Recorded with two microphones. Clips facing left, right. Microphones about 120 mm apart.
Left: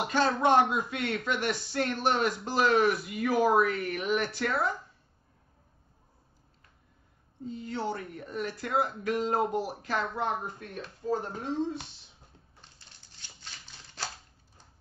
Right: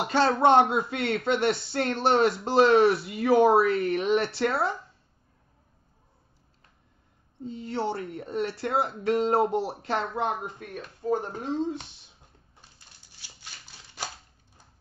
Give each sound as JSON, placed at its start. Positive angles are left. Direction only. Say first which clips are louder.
{"t": 0.0, "sound": "speech", "louder": "right 4 dB", "side_deg": -35}
{"t": 7.4, "sound": "speech", "louder": "right 3 dB", "side_deg": -30}
{"t": 10.1, "sound": "speech", "louder": "right 3 dB", "side_deg": -20}
{"t": 13.2, "sound": "a sound", "louder": "right 1 dB", "side_deg": -10}